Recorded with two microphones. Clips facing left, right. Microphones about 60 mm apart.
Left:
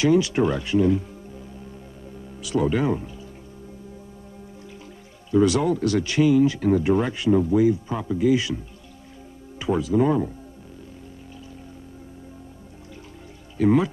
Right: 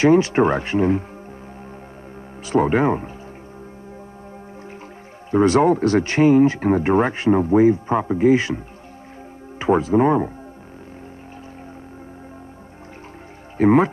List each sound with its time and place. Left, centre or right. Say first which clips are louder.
0.0 s speech: right 5 dB; right
2.4 s speech: right 5 dB; right
5.3 s speech: right 4 dB; right
13.6 s speech: right 4 dB; right